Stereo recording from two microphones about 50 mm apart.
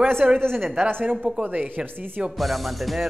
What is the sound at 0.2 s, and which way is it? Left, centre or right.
Speech, centre.